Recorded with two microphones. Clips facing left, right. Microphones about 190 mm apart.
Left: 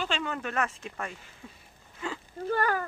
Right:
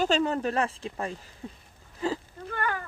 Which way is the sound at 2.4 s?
35° left (ahead or behind).